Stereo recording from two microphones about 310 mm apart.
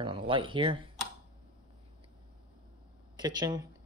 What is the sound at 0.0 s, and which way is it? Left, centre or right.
Speech, centre.